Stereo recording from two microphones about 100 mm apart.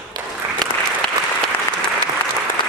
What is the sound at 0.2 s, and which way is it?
Applause, 45° right (ahead or behind).